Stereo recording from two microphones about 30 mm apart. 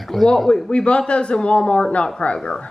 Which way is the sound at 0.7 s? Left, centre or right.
Left.